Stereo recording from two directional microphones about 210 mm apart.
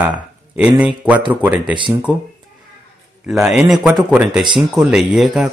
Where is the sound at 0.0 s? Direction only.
5° right (ahead or behind).